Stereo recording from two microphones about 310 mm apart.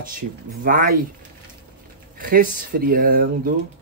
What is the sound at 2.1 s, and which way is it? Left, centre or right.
Speech, right.